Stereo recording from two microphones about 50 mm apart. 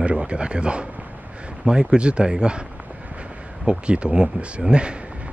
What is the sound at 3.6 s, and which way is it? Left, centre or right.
Speech, right.